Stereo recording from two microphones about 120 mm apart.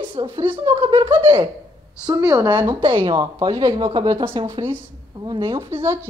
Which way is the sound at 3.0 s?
35° right (ahead or behind).